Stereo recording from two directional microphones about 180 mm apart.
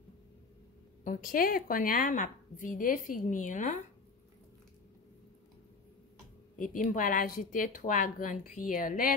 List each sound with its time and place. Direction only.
1.0 s a woman's voice: 50° left (ahead or behind)
6.6 s a woman's voice: 45° left (ahead or behind)